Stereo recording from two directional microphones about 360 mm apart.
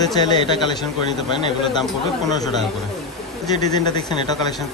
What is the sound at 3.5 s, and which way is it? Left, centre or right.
Speech, centre.